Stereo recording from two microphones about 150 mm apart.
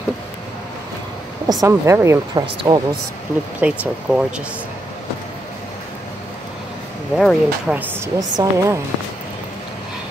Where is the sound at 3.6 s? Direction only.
5° right (ahead or behind).